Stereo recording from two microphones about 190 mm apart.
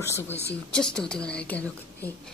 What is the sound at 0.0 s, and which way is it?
Speech, 15° left (ahead or behind).